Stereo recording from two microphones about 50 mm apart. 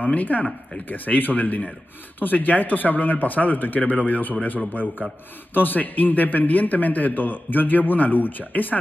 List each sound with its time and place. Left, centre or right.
0.0 s a man's voice: left
5.5 s a man's voice: left